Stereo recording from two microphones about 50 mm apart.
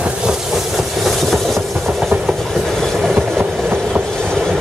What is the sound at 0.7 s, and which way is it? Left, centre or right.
Train, centre.